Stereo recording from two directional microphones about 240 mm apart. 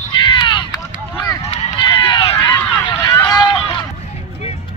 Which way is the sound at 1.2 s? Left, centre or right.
Left.